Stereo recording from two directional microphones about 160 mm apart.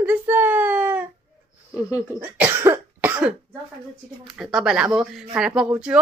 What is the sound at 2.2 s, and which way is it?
Cough, 10° right (ahead or behind).